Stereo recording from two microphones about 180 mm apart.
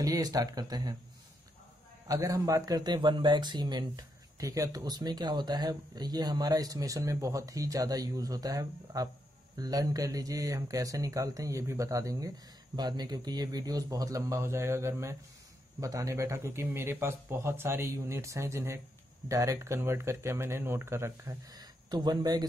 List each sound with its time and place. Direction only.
0.0 s speech: 20° right (ahead or behind)
2.0 s speech: 20° right (ahead or behind)